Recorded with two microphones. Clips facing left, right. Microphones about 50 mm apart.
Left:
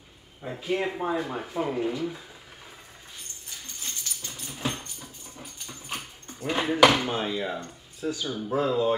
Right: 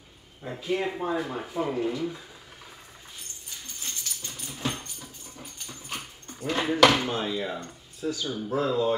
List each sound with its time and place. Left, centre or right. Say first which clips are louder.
0.4 s speech: even; centre
4.3 s dog: even; centre
6.2 s speech: even; centre
8.3 s speech: left 1 dB; centre